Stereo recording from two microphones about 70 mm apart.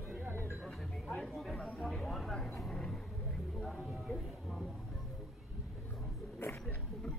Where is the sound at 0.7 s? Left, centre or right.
Centre.